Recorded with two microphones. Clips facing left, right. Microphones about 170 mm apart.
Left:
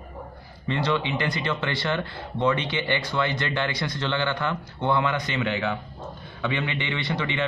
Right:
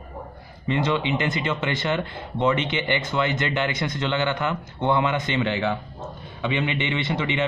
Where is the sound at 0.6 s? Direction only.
15° right (ahead or behind).